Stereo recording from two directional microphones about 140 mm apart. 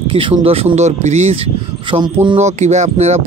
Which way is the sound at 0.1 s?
45° right (ahead or behind).